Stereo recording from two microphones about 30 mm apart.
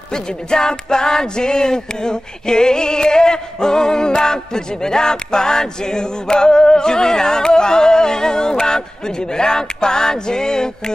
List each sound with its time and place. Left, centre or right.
0.1 s music: left